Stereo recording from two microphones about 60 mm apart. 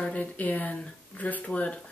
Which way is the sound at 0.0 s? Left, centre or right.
Left.